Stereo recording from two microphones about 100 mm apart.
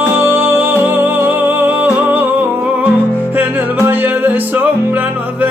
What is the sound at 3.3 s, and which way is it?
Music, 20° right (ahead or behind).